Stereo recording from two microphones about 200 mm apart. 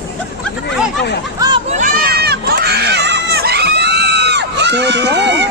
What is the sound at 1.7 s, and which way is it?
Crowd, 40° right (ahead or behind).